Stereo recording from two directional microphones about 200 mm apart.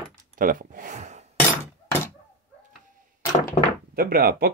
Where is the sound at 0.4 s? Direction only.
45° right (ahead or behind).